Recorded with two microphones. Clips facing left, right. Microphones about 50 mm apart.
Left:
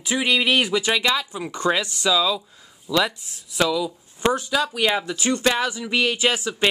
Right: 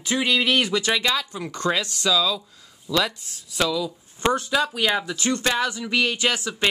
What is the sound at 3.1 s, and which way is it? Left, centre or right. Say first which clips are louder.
Speech: even; left.